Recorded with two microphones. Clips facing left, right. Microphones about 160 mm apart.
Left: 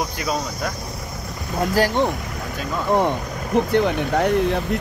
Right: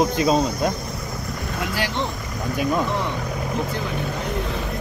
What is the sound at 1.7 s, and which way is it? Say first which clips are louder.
Speech: left 9 dB; 45° left (ahead or behind).